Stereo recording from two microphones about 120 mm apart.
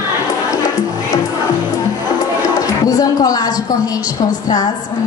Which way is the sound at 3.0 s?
30° left (ahead or behind).